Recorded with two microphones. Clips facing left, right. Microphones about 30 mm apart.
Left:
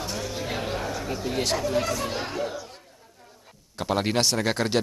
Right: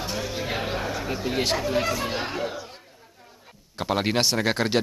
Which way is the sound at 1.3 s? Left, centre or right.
Centre.